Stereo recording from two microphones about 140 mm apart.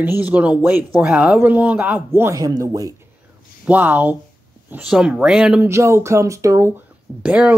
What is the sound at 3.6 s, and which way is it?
Speech, 10° right (ahead or behind).